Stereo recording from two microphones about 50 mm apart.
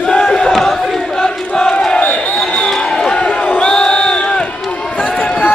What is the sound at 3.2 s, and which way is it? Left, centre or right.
Crowd, left.